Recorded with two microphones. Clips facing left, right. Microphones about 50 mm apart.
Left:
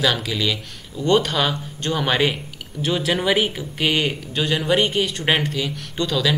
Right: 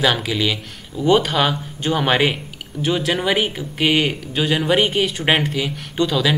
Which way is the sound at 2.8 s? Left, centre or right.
Centre.